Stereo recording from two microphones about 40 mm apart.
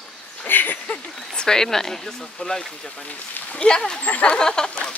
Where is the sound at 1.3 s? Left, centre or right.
Centre.